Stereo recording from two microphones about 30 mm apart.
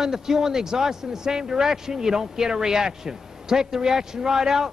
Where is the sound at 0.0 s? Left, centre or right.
Centre.